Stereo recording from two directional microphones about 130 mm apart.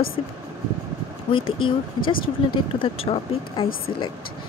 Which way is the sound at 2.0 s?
40° left (ahead or behind).